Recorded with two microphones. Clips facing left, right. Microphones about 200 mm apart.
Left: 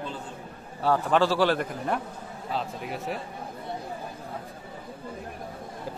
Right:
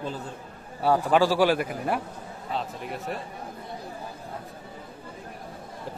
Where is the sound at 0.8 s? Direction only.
10° right (ahead or behind).